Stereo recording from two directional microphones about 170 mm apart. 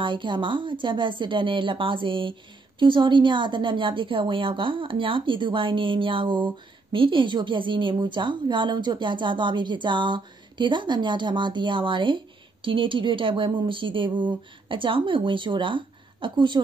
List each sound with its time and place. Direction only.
0.0 s a woman's voice: 30° right (ahead or behind)